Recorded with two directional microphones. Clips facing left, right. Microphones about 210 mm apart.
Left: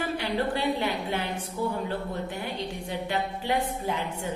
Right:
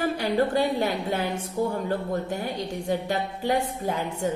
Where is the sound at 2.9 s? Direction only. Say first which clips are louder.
Right 4 dB; 40° right (ahead or behind).